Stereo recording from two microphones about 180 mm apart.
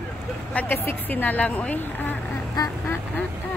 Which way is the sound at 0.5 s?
10° left (ahead or behind).